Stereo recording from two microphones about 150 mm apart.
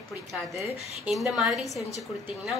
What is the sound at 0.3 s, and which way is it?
A woman's voice, centre (ahead or behind).